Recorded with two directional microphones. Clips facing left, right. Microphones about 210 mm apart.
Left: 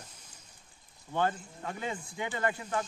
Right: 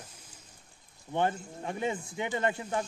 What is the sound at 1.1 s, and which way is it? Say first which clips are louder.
Speech: right 1 dB; 25° right (ahead or behind).